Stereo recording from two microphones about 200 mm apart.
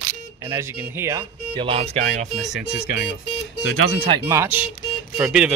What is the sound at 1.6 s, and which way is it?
Speech, 25° right (ahead or behind).